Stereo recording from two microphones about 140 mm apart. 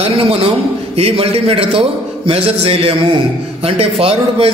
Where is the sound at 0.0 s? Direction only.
45° right (ahead or behind).